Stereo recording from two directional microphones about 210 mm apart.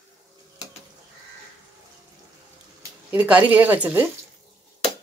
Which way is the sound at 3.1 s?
10° right (ahead or behind).